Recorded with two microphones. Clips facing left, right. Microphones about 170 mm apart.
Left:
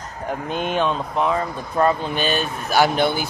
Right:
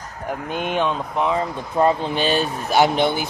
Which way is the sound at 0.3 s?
15° right (ahead or behind).